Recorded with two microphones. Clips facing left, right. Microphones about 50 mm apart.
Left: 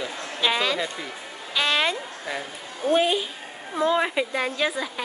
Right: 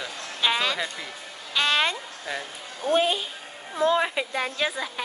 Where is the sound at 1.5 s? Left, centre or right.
Centre.